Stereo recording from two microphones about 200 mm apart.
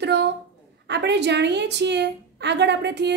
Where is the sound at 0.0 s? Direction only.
60° right (ahead or behind).